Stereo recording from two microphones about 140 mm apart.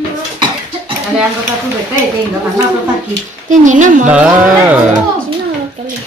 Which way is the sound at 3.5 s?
65° right (ahead or behind).